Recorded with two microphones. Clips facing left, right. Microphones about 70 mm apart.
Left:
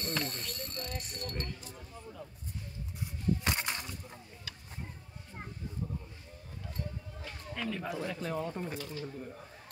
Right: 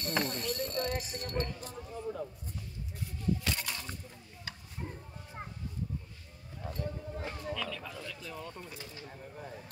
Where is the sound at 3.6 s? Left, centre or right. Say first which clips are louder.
Left 3 dB; left.